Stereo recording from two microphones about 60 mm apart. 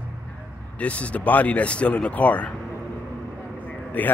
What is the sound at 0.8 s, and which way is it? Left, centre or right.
Speech, left.